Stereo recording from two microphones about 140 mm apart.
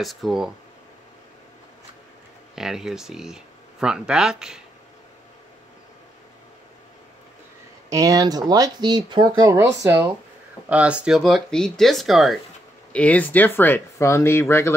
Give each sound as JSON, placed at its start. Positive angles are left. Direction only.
{"t": 0.0, "sound": "speech", "side_deg": 0}
{"t": 2.5, "sound": "speech", "side_deg": -5}
{"t": 7.9, "sound": "speech", "side_deg": -25}
{"t": 12.9, "sound": "speech", "side_deg": 10}